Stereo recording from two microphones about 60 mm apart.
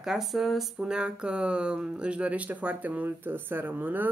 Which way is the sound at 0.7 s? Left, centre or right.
Centre.